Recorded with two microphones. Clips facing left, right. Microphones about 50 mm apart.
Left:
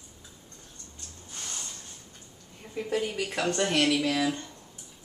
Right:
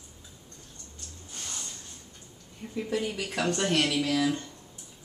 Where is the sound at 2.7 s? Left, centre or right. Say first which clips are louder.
Left 1 dB; centre.